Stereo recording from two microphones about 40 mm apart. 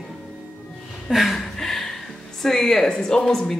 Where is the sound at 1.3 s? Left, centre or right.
Centre.